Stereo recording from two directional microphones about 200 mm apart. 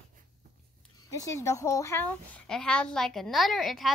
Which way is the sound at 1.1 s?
15° left (ahead or behind).